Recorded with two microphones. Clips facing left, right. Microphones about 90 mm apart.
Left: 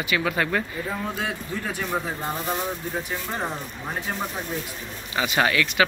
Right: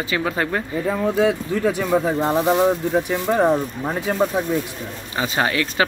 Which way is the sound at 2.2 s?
90° right.